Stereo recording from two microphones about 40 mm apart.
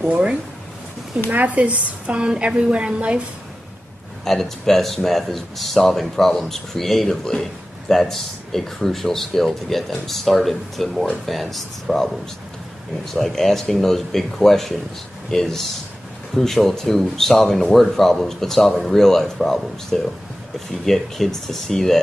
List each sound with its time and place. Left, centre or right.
0.1 s a woman's voice: right
2.1 s a woman's voice: right
4.2 s speech: centre
13.1 s speech: centre